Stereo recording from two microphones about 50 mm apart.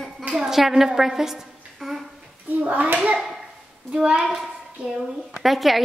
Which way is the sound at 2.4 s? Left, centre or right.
Right.